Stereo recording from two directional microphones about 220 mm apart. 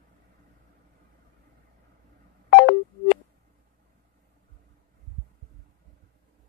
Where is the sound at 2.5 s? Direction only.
30° left (ahead or behind).